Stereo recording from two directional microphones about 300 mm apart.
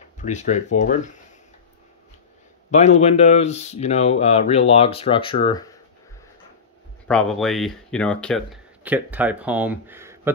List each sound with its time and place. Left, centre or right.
0.2 s speech: left
2.7 s speech: left
7.1 s speech: centre